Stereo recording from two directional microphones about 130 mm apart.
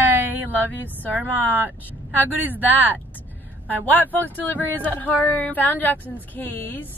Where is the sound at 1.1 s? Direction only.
15° right (ahead or behind).